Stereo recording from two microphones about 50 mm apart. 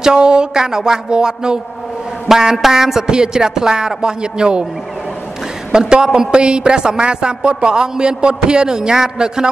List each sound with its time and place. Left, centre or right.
0.0 s a woman's voice: centre
5.7 s a woman's voice: centre